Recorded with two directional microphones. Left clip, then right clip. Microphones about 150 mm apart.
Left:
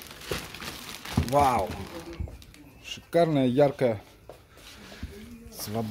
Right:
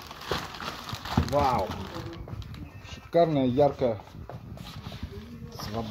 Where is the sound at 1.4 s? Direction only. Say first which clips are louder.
Left 3 dB; 35° left (ahead or behind).